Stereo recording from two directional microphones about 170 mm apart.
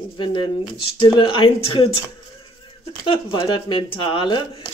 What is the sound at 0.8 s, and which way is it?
Speech, 30° left (ahead or behind).